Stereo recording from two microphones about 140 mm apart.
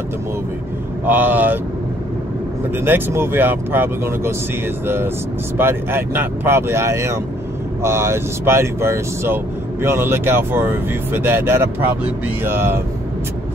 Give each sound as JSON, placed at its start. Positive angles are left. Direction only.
{"t": 1.0, "sound": "speech", "side_deg": -15}
{"t": 2.7, "sound": "speech", "side_deg": -15}